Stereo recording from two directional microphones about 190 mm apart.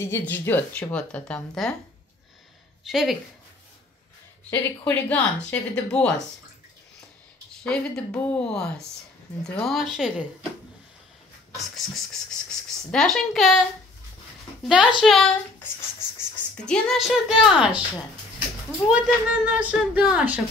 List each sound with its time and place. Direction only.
0.0 s speech: 10° left (ahead or behind)
2.8 s speech: centre (ahead or behind)
4.5 s speech: 10° left (ahead or behind)
7.6 s speech: 5° left (ahead or behind)
11.5 s speech: centre (ahead or behind)
14.7 s speech: 5° right (ahead or behind)
16.6 s speech: centre (ahead or behind)
18.9 s speech: 5° right (ahead or behind)